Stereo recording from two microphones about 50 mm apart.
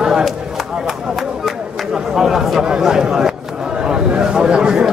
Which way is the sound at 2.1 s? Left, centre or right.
Centre.